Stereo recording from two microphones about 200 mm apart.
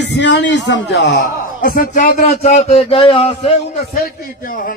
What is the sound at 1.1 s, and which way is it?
A man's voice, 45° left (ahead or behind).